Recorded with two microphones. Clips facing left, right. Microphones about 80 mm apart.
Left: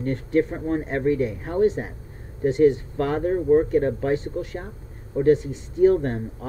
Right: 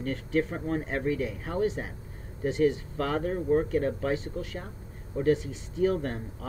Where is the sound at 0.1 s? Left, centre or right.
Left.